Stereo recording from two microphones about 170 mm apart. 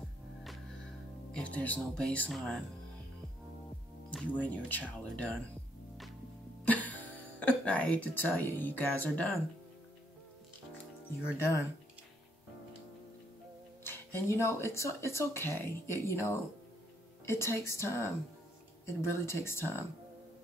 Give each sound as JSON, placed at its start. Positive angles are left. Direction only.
{"t": 1.3, "sound": "speech", "side_deg": 5}
{"t": 4.1, "sound": "speech", "side_deg": 10}
{"t": 6.6, "sound": "speech", "side_deg": 10}
{"t": 11.2, "sound": "speech", "side_deg": 15}
{"t": 13.8, "sound": "speech", "side_deg": 15}